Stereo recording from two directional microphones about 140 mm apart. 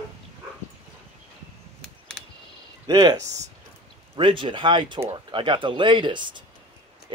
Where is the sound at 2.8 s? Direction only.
30° right (ahead or behind).